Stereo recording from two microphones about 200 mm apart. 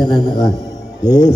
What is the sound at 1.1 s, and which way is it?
Speech, 20° left (ahead or behind).